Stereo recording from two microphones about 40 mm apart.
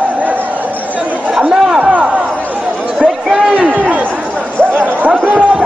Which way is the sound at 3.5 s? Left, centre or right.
Right.